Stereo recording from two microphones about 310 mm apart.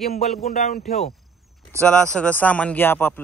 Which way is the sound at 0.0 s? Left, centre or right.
Left.